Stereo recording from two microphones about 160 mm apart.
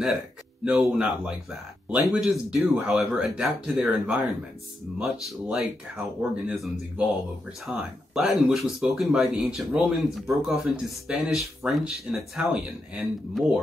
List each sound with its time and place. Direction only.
0.7 s speech: 5° right (ahead or behind)
5.5 s speech: 5° right (ahead or behind)